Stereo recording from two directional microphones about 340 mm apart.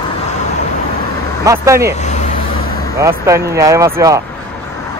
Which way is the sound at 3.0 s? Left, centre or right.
Centre.